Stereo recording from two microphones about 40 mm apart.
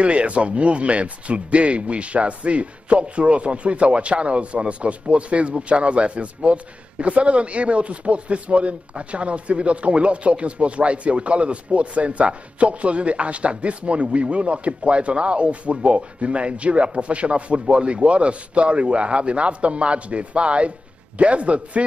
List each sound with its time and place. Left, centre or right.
0.0 s a man's voice: right